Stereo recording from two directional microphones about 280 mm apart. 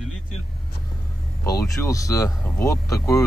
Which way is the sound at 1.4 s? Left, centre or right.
Centre.